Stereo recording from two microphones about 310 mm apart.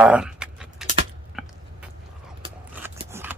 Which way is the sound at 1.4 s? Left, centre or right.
Centre.